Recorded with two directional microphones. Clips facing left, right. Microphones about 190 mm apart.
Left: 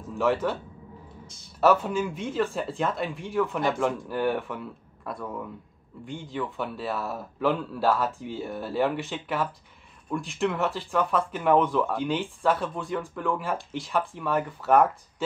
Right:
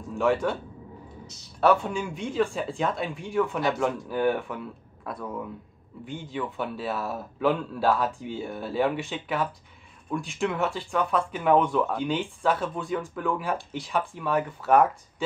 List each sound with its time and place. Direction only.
0.1 s speech: centre (ahead or behind)
1.2 s a sound: 50° left (ahead or behind)
1.6 s speech: 5° left (ahead or behind)